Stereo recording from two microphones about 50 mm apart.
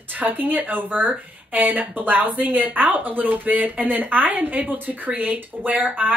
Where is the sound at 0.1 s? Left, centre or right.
Right.